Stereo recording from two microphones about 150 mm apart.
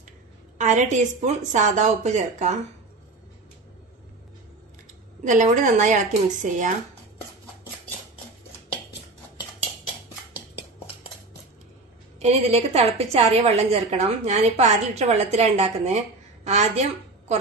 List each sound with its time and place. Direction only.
0.6 s a woman's voice: 55° right (ahead or behind)
5.2 s a woman's voice: 55° right (ahead or behind)
12.2 s a woman's voice: 45° right (ahead or behind)